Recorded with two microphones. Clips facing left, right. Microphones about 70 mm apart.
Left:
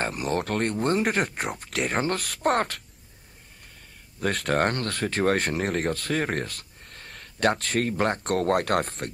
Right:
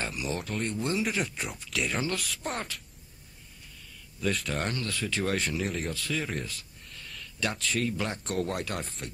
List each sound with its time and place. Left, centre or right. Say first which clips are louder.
0.0 s speech: left 6 dB; left
4.2 s speech: left 6 dB; left